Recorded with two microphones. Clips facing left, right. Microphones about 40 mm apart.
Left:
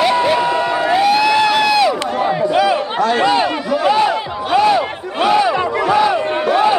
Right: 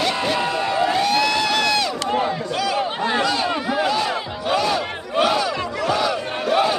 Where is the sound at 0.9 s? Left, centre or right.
Centre.